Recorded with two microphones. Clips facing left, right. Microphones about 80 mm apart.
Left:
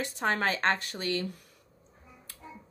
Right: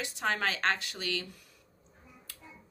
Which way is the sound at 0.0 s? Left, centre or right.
Left.